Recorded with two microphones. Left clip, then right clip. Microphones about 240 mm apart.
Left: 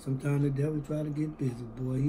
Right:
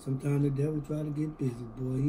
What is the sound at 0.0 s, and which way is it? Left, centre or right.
Speech, centre.